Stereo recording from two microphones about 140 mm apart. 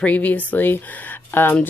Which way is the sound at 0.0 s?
10° left (ahead or behind).